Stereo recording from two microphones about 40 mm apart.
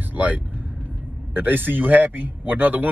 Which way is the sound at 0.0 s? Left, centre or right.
Right.